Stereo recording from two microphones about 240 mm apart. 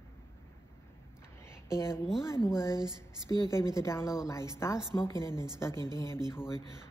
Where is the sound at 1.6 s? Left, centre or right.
Centre.